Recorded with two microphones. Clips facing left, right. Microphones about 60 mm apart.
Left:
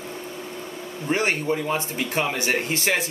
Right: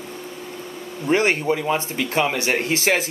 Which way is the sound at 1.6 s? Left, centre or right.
Right.